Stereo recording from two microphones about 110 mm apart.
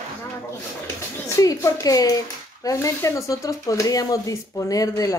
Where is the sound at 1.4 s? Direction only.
30° left (ahead or behind).